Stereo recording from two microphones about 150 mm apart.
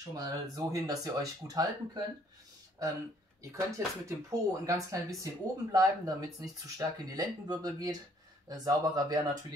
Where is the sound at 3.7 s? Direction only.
20° right (ahead or behind).